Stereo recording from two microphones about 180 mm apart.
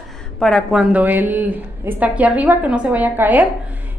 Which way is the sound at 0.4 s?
Centre (ahead or behind).